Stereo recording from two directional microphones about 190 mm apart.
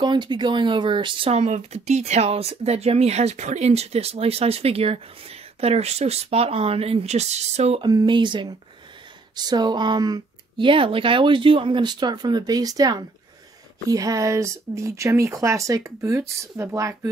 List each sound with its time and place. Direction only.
0.0 s speech: 25° right (ahead or behind)
7.8 s speech: 20° right (ahead or behind)